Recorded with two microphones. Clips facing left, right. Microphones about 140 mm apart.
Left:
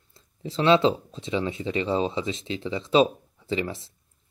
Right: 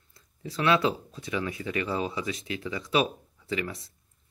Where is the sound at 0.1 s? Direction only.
25° left (ahead or behind).